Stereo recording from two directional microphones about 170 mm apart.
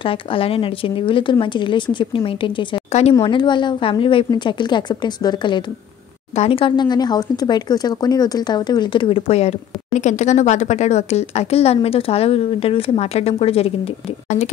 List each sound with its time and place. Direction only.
0.0 s speech: 30° left (ahead or behind)
3.2 s speech: 25° left (ahead or behind)